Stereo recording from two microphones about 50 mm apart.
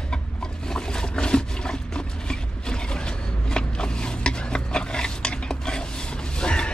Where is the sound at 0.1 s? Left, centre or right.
Centre.